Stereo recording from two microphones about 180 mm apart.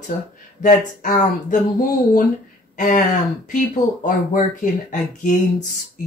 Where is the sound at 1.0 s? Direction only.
45° left (ahead or behind).